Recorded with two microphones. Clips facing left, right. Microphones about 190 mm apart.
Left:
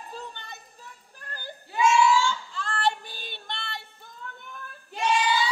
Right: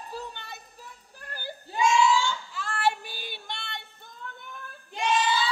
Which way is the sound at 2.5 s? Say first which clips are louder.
Even; 5° right (ahead or behind).